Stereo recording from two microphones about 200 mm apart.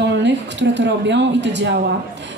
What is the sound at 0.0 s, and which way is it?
Speech, 60° right (ahead or behind).